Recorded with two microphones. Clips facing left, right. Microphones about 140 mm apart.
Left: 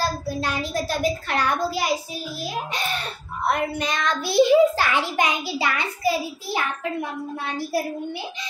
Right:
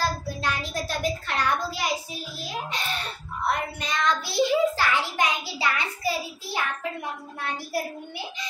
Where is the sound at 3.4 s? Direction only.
65° left (ahead or behind).